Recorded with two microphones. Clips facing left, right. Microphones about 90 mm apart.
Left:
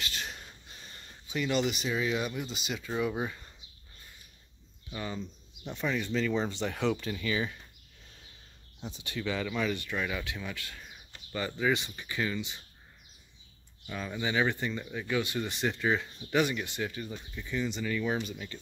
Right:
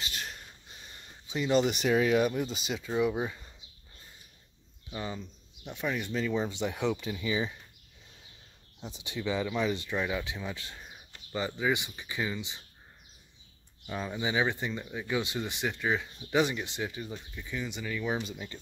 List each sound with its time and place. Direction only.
0.1 s a sound: centre (ahead or behind)
1.2 s speech: 25° right (ahead or behind)
1.6 s speech: 55° right (ahead or behind); by 2.9 s 30° right (ahead or behind)
2.9 s speech: 15° right (ahead or behind)
4.9 s speech: 15° right (ahead or behind)
8.9 s speech: 20° right (ahead or behind)
13.8 s speech: 20° right (ahead or behind); by 16.1 s 5° right (ahead or behind)
16.3 s speech: 20° right (ahead or behind)